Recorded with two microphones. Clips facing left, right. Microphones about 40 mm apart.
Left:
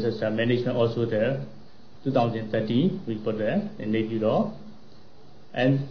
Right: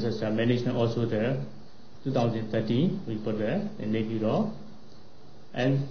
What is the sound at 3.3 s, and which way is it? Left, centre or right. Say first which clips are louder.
Speech: left 3 dB; centre.